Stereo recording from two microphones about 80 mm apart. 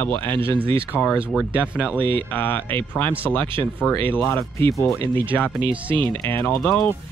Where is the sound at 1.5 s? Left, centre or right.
Centre.